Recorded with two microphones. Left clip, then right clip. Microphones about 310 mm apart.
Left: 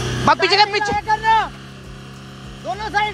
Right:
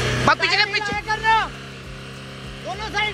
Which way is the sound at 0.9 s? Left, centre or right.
Left.